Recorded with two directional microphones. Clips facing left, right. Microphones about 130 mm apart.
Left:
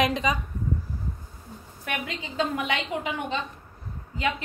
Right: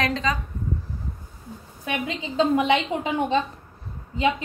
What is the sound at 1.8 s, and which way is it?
A woman's voice, 25° right (ahead or behind).